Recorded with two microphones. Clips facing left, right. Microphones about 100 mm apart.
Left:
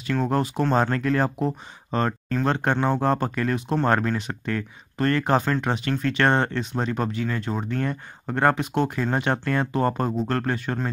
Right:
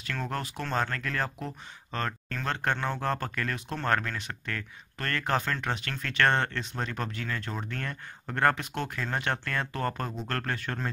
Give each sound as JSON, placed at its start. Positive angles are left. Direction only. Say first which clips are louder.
{"t": 0.2, "sound": "speech", "louder": "left 11 dB", "side_deg": 25}